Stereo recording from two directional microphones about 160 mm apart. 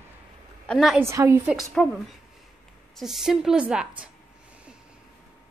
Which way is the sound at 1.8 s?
5° left (ahead or behind).